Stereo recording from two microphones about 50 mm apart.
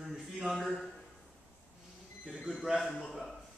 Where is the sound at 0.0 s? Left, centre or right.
Centre.